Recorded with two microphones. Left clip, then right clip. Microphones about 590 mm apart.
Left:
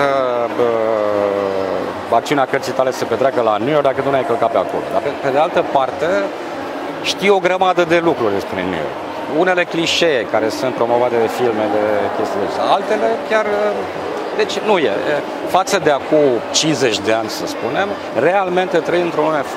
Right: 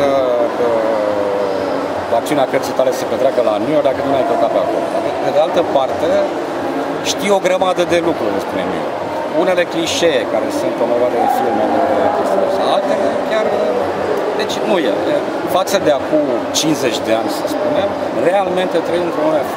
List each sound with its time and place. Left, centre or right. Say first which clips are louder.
7.2 s speech: left 1 dB; left
9.5 s speech: right 1 dB; left
15.5 s speech: even; left